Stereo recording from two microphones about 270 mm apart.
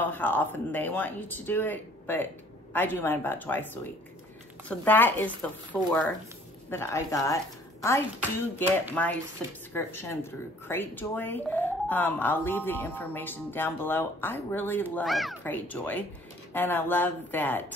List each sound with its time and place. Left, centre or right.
0.1 s speech: centre